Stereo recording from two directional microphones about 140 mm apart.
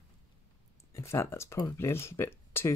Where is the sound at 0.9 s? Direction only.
20° left (ahead or behind).